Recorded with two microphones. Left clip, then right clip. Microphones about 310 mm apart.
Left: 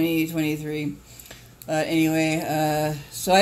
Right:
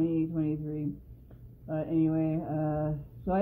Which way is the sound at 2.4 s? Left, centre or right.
Left.